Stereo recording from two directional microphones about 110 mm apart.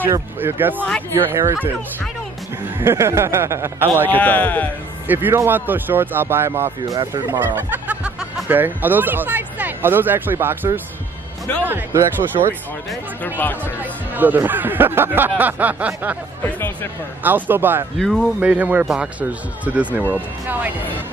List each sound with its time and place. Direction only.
0.0 s speech: 20° right (ahead or behind)
2.8 s speech: 25° right (ahead or behind)
4.1 s speech: 15° left (ahead or behind)
5.0 s a man's voice: 15° right (ahead or behind)
6.9 s speech: 40° right (ahead or behind)
7.2 s speech: 15° right (ahead or behind)
13.2 s speech: 20° left (ahead or behind)
13.7 s speech: 15° right (ahead or behind)
16.4 s music: 20° left (ahead or behind)
17.2 s speech: 15° right (ahead or behind)
17.9 s speech: 5° left (ahead or behind)
18.4 s speech: 15° right (ahead or behind)